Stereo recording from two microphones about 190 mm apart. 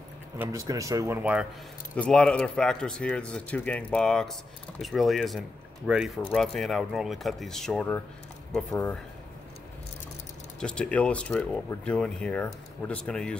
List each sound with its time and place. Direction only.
0.4 s speech: 15° right (ahead or behind)
2.0 s speech: 5° left (ahead or behind)
10.6 s speech: 5° left (ahead or behind)